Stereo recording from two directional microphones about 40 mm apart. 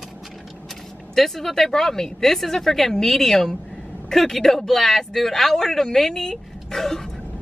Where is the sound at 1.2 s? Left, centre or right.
Centre.